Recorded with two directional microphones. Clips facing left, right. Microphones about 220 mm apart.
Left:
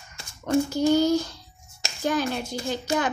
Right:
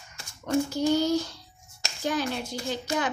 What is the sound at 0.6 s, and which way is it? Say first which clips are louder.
A woman's voice: left 5 dB; 45° left (ahead or behind).